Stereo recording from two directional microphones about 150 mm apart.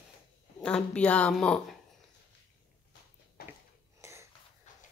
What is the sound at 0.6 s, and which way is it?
Speech, 5° left (ahead or behind).